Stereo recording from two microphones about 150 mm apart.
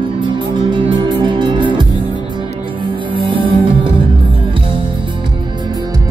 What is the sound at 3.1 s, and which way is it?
Music, 35° right (ahead or behind).